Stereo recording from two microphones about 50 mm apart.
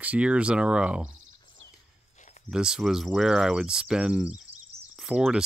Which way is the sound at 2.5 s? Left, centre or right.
Centre.